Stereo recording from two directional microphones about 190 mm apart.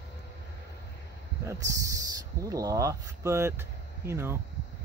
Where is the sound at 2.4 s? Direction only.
15° right (ahead or behind).